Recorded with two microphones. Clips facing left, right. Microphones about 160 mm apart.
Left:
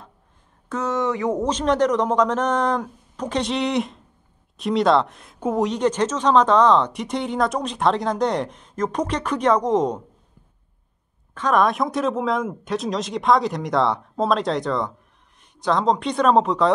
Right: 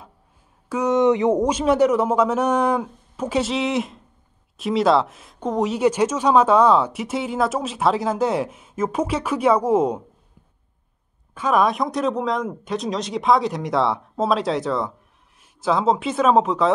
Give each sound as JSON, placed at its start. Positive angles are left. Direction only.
{"t": 0.7, "sound": "speech", "side_deg": -15}
{"t": 1.5, "sound": "speech", "side_deg": -10}
{"t": 5.7, "sound": "speech", "side_deg": -10}
{"t": 11.3, "sound": "speech", "side_deg": -5}